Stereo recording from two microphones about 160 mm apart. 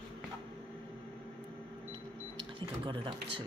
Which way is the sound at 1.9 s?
35° right (ahead or behind).